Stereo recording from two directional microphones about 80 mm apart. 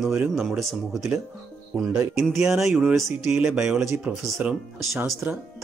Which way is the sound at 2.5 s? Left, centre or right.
Centre.